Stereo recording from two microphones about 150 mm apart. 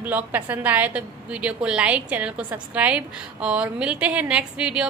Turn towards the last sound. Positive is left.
turn(degrees=-5)  # may be behind; listen again after turning